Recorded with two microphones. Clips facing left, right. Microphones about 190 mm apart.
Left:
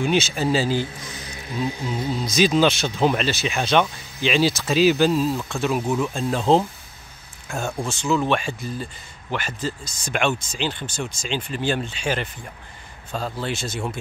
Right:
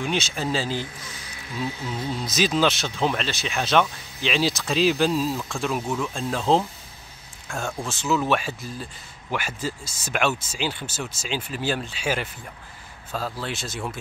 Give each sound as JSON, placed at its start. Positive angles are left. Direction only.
{"t": 0.0, "sound": "speech", "side_deg": 5}
{"t": 1.6, "sound": "speech", "side_deg": 15}
{"t": 2.2, "sound": "speech", "side_deg": 0}
{"t": 5.9, "sound": "speech", "side_deg": 15}
{"t": 6.1, "sound": "speech", "side_deg": 0}